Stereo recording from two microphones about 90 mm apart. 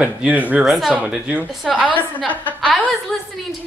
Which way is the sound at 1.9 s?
20° left (ahead or behind).